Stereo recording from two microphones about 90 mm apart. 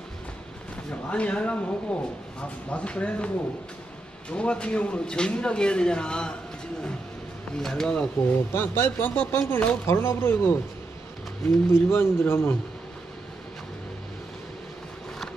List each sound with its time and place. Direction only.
1.1 s speech: 15° left (ahead or behind)
4.3 s speech: 10° left (ahead or behind)
7.5 s speech: 5° left (ahead or behind)
8.3 s speech: 25° left (ahead or behind)
11.7 s speech: 30° left (ahead or behind)